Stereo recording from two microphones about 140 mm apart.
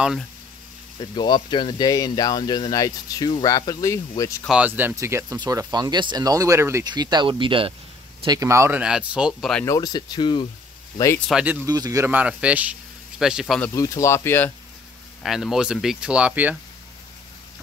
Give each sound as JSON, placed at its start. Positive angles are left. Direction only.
{"t": 0.9, "sound": "speech", "side_deg": 30}
{"t": 4.5, "sound": "speech", "side_deg": -10}
{"t": 6.9, "sound": "speech", "side_deg": -30}
{"t": 8.3, "sound": "speech", "side_deg": -20}
{"t": 8.8, "sound": "speech", "side_deg": -5}
{"t": 9.7, "sound": "speech", "side_deg": 25}
{"t": 11.3, "sound": "speech", "side_deg": -10}
{"t": 11.6, "sound": "speech", "side_deg": -25}
{"t": 12.1, "sound": "speech", "side_deg": -10}
{"t": 13.7, "sound": "speech", "side_deg": 25}
{"t": 15.2, "sound": "speech", "side_deg": 0}